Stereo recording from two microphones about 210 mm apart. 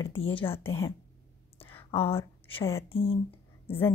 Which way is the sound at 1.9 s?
25° left (ahead or behind).